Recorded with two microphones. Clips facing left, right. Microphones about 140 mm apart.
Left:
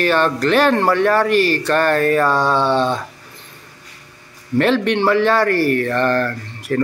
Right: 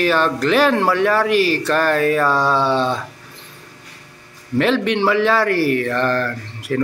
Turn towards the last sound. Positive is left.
turn(degrees=0)  # may be behind; listen again after turning